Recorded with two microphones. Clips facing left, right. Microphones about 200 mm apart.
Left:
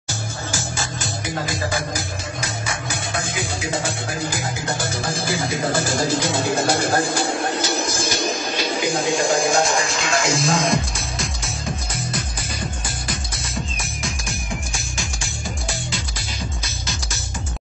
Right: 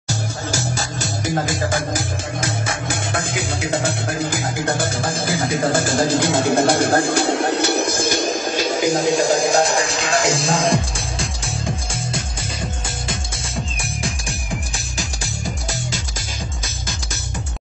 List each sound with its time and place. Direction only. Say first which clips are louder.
0.5 s music: right 3 dB; 40° right (ahead or behind)